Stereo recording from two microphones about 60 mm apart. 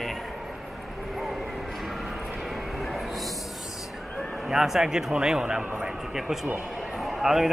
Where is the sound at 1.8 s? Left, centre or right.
Centre.